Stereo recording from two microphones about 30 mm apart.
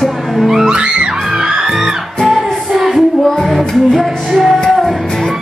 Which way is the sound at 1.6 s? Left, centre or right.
Centre.